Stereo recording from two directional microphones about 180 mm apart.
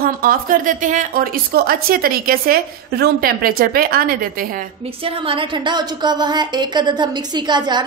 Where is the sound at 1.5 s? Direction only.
55° right (ahead or behind).